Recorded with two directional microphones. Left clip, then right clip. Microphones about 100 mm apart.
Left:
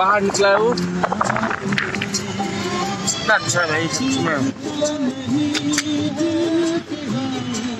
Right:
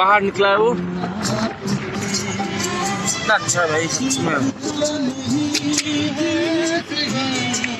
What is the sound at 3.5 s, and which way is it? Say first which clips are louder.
Speech: even; 30° right (ahead or behind).